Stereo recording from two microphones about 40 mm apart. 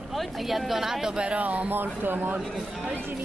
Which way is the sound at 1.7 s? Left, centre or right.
Right.